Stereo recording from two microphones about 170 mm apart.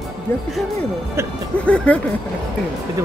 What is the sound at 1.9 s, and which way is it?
Speech, 5° left (ahead or behind).